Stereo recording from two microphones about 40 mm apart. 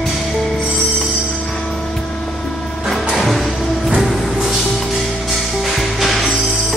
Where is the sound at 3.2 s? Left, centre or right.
Centre.